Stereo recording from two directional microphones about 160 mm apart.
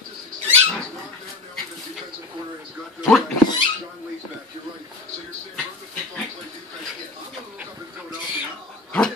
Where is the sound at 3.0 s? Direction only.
Centre (ahead or behind).